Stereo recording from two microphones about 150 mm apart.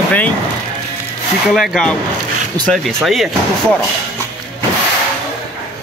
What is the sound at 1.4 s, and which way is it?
Speech, centre (ahead or behind).